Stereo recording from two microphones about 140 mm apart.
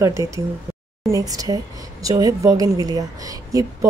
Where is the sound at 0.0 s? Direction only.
20° right (ahead or behind).